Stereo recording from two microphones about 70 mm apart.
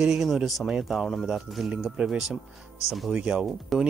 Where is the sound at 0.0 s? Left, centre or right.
Centre.